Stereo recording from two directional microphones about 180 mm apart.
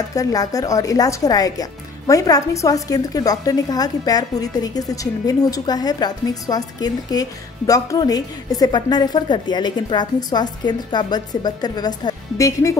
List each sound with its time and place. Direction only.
0.1 s speech: 20° left (ahead or behind)